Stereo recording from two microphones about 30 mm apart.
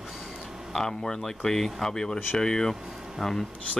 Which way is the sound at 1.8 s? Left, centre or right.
Left.